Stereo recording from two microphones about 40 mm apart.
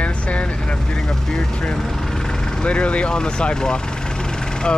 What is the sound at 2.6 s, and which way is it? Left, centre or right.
Speech, left.